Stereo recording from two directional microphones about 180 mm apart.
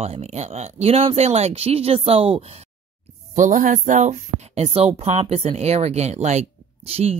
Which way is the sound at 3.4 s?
45° right (ahead or behind).